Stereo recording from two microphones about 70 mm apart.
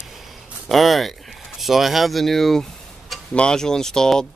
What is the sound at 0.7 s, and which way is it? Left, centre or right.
Speech, centre.